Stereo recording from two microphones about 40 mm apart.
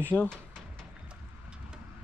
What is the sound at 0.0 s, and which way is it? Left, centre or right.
Speech, left.